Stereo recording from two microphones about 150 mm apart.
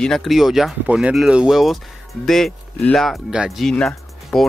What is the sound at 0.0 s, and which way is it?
Speech, centre (ahead or behind).